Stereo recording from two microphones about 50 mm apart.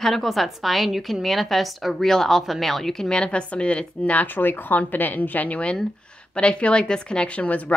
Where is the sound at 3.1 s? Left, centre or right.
Left.